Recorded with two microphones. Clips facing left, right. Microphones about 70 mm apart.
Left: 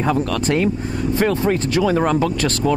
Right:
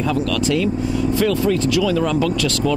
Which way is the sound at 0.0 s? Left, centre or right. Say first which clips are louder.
Even; left.